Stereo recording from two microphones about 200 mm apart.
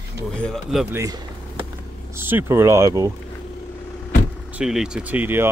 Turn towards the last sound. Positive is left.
turn(degrees=-10)  # may be behind; listen again after turning